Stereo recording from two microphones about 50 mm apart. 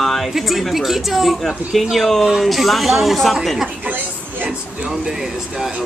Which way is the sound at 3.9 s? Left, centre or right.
Right.